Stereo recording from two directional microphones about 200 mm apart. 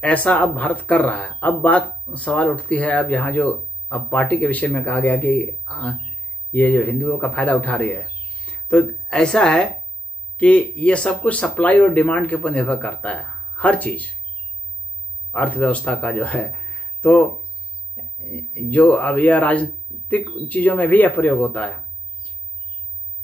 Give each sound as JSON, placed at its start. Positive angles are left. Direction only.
{"t": 0.0, "sound": "speech", "side_deg": 5}
{"t": 15.3, "sound": "speech", "side_deg": 5}